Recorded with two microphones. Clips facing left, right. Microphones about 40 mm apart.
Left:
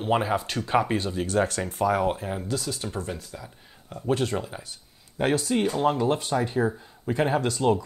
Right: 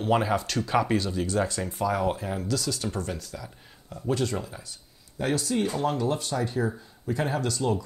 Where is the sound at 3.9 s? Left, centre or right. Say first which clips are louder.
Left 2 dB; left.